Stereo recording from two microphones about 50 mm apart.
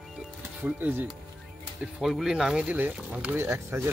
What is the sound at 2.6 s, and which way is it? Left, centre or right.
Speech, right.